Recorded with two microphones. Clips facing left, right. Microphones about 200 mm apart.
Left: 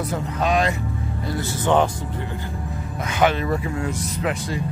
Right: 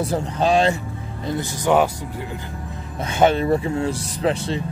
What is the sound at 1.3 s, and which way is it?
Speech, 10° right (ahead or behind).